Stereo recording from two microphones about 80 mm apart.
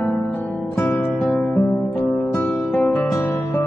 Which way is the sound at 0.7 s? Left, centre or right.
Left.